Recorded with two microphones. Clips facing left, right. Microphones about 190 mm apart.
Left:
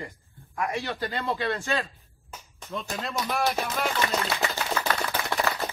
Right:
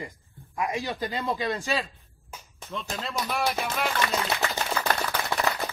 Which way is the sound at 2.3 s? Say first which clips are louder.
Left 1 dB; 5° right (ahead or behind).